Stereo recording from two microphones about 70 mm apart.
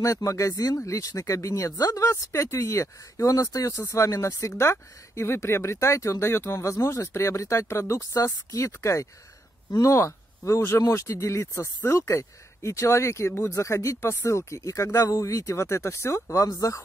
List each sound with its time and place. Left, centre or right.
0.0 s speech: left
13.3 s speech: left
13.6 s speech: left